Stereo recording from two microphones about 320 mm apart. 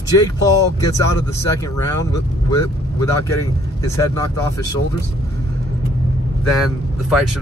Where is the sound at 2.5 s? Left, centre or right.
Centre.